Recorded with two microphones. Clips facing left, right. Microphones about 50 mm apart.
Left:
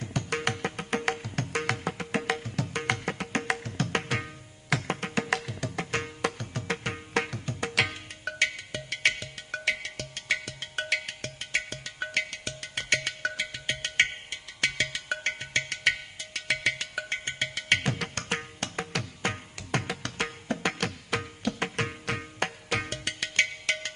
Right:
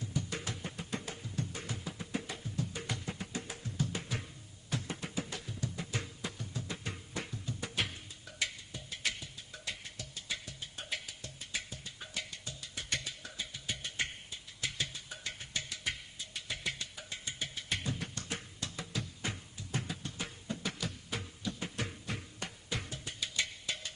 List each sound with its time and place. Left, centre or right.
0.0 s music: left